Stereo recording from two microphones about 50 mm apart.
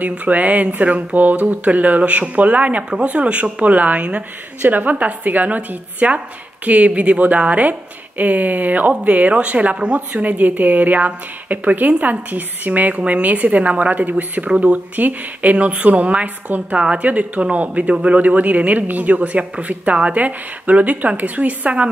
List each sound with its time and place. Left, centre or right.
0.2 s speech: right
15.5 s speech: right